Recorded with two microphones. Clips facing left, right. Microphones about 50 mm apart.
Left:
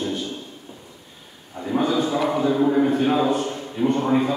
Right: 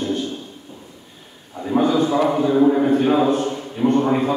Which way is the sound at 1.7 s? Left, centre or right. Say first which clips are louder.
Right 4 dB; centre.